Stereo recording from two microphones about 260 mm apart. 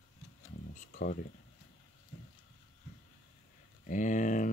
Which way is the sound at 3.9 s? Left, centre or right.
Left.